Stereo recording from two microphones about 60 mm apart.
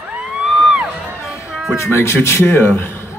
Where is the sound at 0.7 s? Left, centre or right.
Centre.